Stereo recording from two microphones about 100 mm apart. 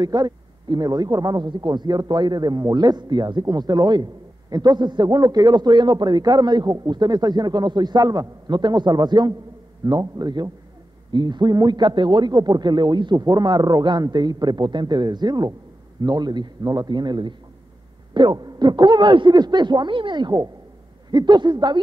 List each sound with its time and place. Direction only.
0.0 s a man's voice: 45° right (ahead or behind)